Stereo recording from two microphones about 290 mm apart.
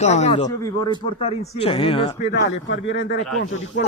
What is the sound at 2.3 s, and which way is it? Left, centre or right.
Speech, left.